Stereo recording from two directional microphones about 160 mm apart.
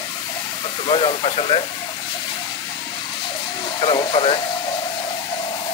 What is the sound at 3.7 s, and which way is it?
Speech, 35° left (ahead or behind).